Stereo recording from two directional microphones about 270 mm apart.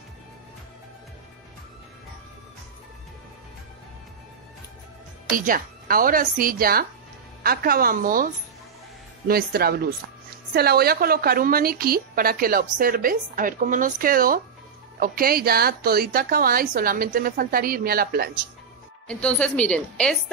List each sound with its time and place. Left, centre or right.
5.3 s a woman's voice: right
9.3 s a woman's voice: right
19.0 s a woman's voice: centre